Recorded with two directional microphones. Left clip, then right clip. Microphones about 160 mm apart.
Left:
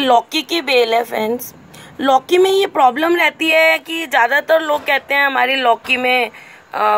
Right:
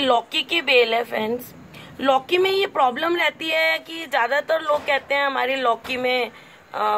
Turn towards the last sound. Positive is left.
turn(degrees=40)  # may be behind; listen again after turning